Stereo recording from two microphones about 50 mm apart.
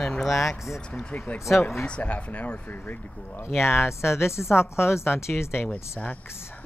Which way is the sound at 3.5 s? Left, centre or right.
Left.